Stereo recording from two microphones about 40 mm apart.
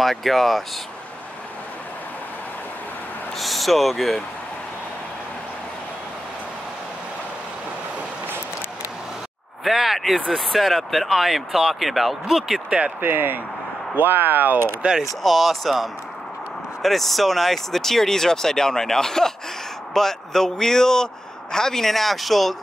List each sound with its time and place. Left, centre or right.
0.0 s speech: centre
3.3 s speech: centre
9.7 s speech: centre
12.6 s speech: right
13.0 s speech: right
15.0 s a man's voice: centre